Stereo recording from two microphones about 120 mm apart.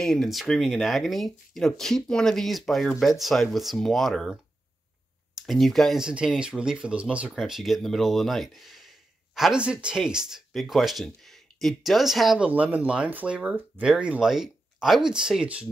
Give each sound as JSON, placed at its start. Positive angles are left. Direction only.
{"t": 0.0, "sound": "speech", "side_deg": 5}
{"t": 12.4, "sound": "speech", "side_deg": -10}